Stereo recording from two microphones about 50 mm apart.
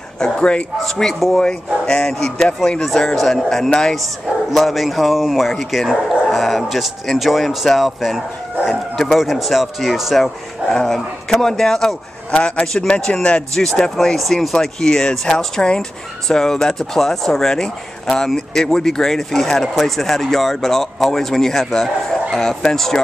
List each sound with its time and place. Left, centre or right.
0.2 s a man's voice: left
0.8 s speech: centre
10.8 s a man's voice: centre
13.6 s speech: centre